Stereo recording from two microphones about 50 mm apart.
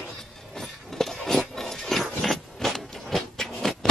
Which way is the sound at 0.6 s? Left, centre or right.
Centre.